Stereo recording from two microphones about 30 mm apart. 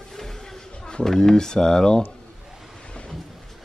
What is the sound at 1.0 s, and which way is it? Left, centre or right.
Speech, centre.